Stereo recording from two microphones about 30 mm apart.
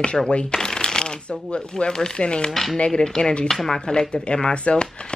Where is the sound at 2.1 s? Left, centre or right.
Left.